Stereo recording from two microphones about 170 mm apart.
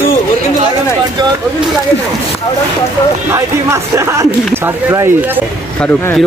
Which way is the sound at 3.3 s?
15° right (ahead or behind).